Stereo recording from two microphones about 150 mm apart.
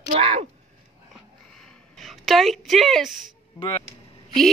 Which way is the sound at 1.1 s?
5° left (ahead or behind).